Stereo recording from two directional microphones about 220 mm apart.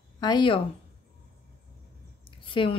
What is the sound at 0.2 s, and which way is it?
Speech, 20° left (ahead or behind).